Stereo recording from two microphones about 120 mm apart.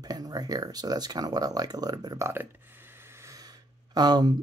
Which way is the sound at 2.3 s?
20° right (ahead or behind).